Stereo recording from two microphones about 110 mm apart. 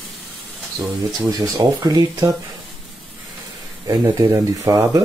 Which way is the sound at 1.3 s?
30° right (ahead or behind).